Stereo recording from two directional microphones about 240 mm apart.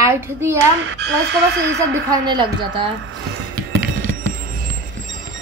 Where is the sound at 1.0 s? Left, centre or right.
Right.